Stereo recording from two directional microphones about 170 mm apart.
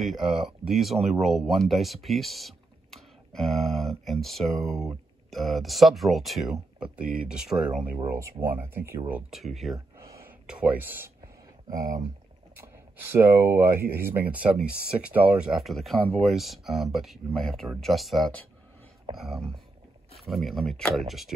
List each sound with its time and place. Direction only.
0.0 s speech: 5° right (ahead or behind)
9.3 s speech: centre (ahead or behind)
11.7 s speech: 20° right (ahead or behind); by 21.3 s centre (ahead or behind)